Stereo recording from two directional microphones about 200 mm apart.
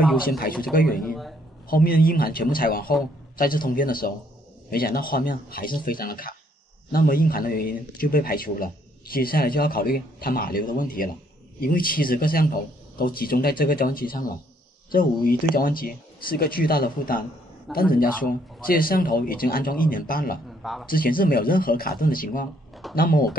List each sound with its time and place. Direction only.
0.3 s speech: 45° left (ahead or behind)
1.0 s a man's voice: centre (ahead or behind)
1.7 s speech: 45° left (ahead or behind)